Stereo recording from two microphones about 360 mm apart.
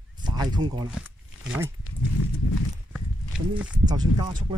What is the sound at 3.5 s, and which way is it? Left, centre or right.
Speech, centre.